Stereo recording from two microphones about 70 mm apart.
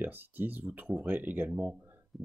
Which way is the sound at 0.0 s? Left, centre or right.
Right.